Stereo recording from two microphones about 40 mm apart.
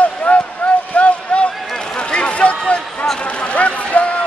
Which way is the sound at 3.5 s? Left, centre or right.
Left.